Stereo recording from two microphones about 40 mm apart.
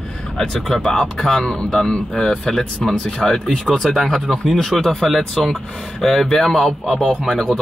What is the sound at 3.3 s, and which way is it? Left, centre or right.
A man's voice, centre.